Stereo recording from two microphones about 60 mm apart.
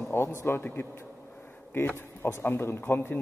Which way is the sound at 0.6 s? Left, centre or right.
Left.